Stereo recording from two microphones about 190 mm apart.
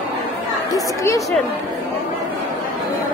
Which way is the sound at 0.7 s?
15° left (ahead or behind).